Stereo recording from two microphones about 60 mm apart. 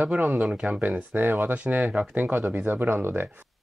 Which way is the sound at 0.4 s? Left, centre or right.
Centre.